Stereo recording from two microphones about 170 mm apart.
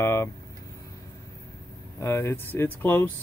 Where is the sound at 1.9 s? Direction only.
15° left (ahead or behind).